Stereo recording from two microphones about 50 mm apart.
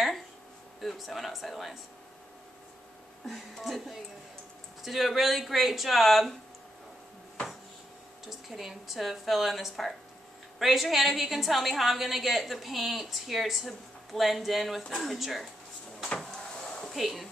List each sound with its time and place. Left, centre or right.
0.7 s a woman's voice: centre
3.3 s a woman's voice: centre
8.3 s a woman's voice: centre
14.8 s speech: centre
15.1 s a woman's voice: centre
16.2 s a sound: centre
16.9 s a woman's voice: centre